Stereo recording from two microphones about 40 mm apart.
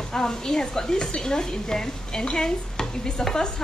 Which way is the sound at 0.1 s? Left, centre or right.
Centre.